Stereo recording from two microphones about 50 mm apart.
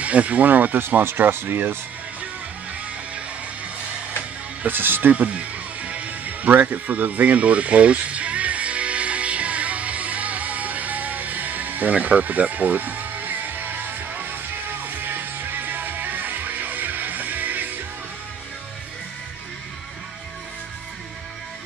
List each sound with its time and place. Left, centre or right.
0.0 s speech: right
4.6 s speech: right
5.1 s music: right